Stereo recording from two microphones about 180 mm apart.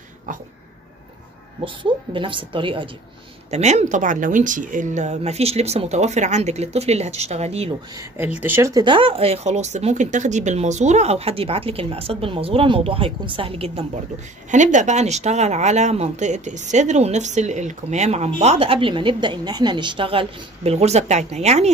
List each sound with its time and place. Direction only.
0.3 s a sound: 45° right (ahead or behind)
1.6 s a woman's voice: 25° right (ahead or behind)
3.4 s speech: 40° right (ahead or behind)
7.9 s speech: 10° right (ahead or behind)
8.8 s speech: 30° right (ahead or behind)
14.5 s speech: 40° right (ahead or behind)